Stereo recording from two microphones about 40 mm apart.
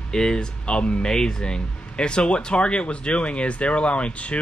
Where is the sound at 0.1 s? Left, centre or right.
Centre.